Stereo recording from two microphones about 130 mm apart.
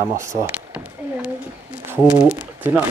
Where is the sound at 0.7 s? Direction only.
10° right (ahead or behind).